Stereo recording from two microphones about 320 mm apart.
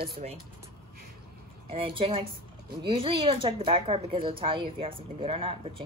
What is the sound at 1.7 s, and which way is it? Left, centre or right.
Speech, centre.